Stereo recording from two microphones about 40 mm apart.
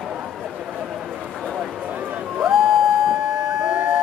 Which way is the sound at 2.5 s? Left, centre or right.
Centre.